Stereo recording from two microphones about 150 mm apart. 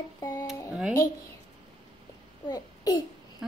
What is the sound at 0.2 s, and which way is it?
Speech, 20° left (ahead or behind).